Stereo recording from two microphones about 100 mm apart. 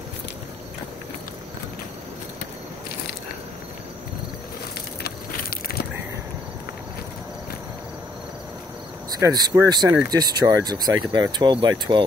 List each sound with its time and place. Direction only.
9.2 s speech: 35° right (ahead or behind)